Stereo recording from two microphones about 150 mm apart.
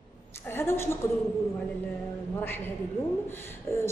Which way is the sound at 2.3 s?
15° left (ahead or behind).